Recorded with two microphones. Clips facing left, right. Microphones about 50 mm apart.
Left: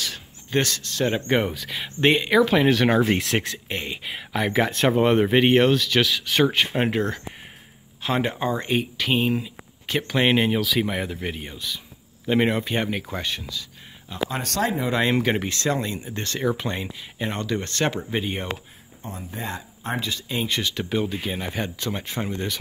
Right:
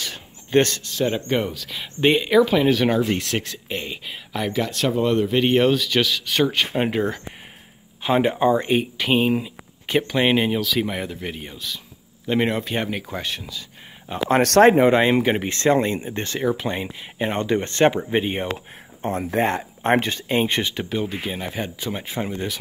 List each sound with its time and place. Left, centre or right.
0.0 s a sound: right
0.9 s speech: centre
4.5 s speech: left
4.9 s speech: left
5.5 s speech: centre
8.0 s speech: centre
10.0 s speech: centre
14.3 s speech: right
14.9 s speech: right
15.4 s speech: right
16.3 s speech: centre
19.0 s speech: right
20.1 s speech: right
20.9 s speech: centre